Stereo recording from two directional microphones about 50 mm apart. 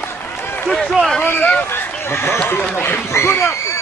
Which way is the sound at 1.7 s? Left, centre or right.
Left.